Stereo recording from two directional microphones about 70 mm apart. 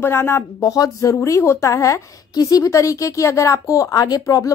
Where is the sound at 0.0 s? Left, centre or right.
Left.